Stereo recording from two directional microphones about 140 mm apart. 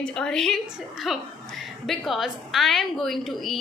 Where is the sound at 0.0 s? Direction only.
5° left (ahead or behind).